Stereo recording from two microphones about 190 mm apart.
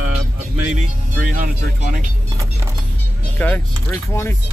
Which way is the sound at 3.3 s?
10° left (ahead or behind).